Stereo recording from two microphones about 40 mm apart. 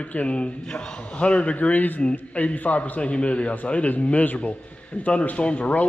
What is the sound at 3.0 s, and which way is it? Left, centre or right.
Speech, left.